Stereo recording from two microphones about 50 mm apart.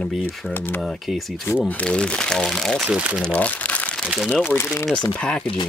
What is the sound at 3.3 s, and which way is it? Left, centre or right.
Crumpling, left.